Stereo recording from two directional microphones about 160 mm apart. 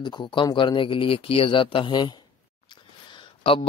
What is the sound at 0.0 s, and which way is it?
Speech, 30° left (ahead or behind).